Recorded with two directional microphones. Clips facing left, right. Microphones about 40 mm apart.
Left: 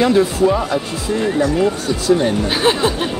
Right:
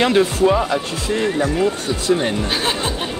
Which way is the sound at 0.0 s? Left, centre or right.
Right.